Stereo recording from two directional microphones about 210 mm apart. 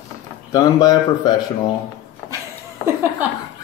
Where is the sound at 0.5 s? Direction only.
20° left (ahead or behind).